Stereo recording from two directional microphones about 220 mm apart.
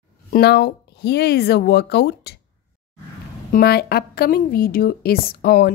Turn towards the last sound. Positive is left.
turn(degrees=45)  # may be behind; listen again after turning